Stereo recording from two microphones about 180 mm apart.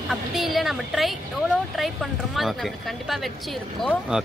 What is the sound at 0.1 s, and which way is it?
Speech, centre (ahead or behind).